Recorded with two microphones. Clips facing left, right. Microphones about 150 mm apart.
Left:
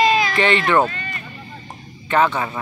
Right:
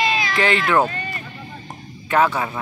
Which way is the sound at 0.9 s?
35° right (ahead or behind).